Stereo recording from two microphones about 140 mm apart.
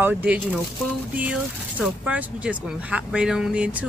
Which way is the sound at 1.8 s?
10° right (ahead or behind).